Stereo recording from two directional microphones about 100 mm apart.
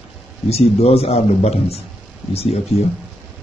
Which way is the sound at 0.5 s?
90° left.